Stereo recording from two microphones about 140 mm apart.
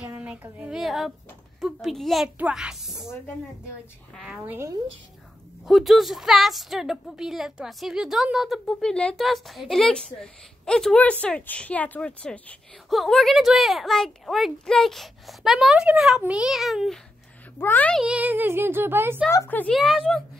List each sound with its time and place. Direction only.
0.0 s a sound: 10° right (ahead or behind)
1.6 s a woman's voice: centre (ahead or behind)
2.3 s a sound: 10° right (ahead or behind)
4.5 s speech: 20° right (ahead or behind)
5.7 s a woman's voice: centre (ahead or behind)
17.6 s a child's voice: 15° left (ahead or behind)
18.0 s speech: 10° right (ahead or behind)
19.3 s a child's voice: 15° left (ahead or behind)
19.7 s a woman's voice: centre (ahead or behind)